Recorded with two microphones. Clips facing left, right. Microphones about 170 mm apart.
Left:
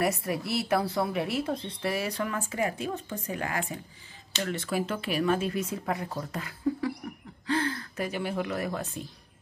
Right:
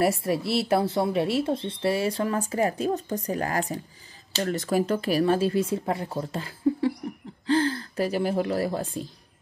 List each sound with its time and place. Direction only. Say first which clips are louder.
0.0 s a woman's voice: right 5 dB; 30° right (ahead or behind)